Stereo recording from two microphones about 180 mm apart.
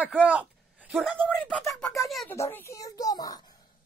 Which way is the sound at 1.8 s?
15° left (ahead or behind).